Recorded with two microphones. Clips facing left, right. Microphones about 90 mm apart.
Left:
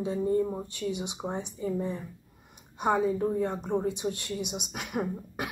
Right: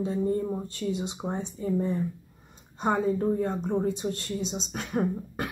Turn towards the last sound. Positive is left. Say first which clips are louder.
# right 4 dB
turn(degrees=15)  # may be behind; listen again after turning